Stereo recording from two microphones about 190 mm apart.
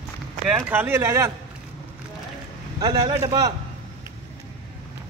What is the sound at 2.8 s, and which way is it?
Speech, 20° right (ahead or behind).